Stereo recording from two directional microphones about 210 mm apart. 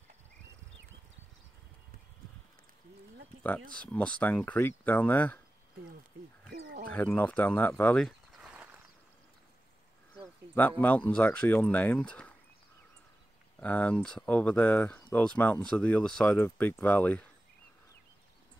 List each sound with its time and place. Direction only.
3.8 s speech: 5° left (ahead or behind)
6.5 s speech: 50° right (ahead or behind)
6.9 s speech: 10° left (ahead or behind)
10.8 s speech: 5° left (ahead or behind)
13.6 s speech: 5° left (ahead or behind)